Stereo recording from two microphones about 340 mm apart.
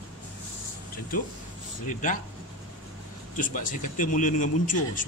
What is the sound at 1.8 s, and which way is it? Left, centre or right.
Speech, left.